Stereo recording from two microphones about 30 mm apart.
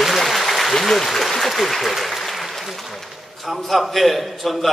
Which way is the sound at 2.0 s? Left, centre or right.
Centre.